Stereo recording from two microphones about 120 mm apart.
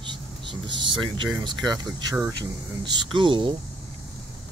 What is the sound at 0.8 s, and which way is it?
Speech, 40° right (ahead or behind).